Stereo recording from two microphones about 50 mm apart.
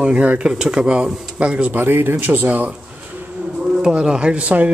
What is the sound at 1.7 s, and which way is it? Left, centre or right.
Speech, right.